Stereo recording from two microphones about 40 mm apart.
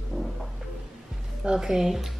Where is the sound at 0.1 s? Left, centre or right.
Left.